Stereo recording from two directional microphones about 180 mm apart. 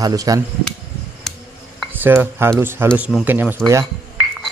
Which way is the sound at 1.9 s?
10° right (ahead or behind).